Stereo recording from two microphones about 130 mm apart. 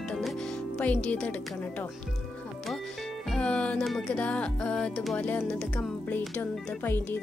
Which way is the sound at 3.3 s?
10° left (ahead or behind).